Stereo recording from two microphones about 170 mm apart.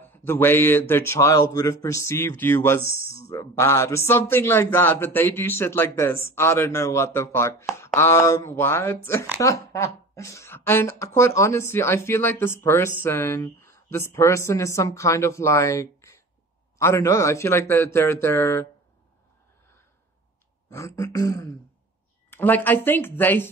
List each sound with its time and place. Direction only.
0.0 s speech: 10° left (ahead or behind)
20.7 s a sound: 20° left (ahead or behind)
22.3 s speech: 10° left (ahead or behind)